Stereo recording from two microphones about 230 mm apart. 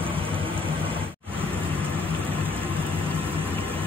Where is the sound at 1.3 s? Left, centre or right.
Centre.